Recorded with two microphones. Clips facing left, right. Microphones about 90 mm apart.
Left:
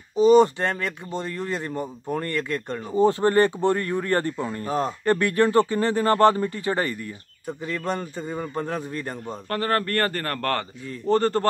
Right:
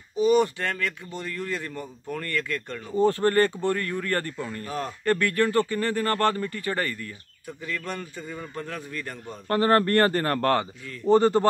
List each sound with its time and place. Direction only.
0.1 s speech: 25° left (ahead or behind)
7.4 s a man's voice: 30° left (ahead or behind)
9.5 s a man's voice: 25° right (ahead or behind)